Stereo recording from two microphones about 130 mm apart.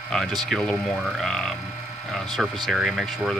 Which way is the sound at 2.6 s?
Centre (ahead or behind).